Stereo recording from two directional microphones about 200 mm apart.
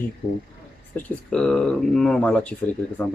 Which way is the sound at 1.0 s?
5° left (ahead or behind).